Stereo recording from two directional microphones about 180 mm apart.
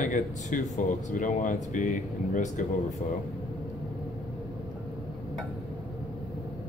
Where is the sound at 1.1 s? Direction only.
45° left (ahead or behind).